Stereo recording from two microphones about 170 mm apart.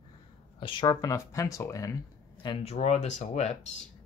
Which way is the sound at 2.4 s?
30° left (ahead or behind).